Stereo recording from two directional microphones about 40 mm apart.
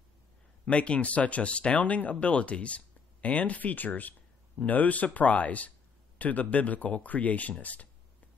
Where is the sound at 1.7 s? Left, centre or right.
Left.